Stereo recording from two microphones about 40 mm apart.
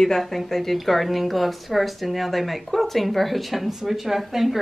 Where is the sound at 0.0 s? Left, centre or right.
Centre.